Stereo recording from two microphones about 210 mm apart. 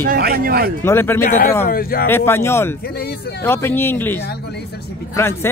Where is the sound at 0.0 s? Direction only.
45° right (ahead or behind).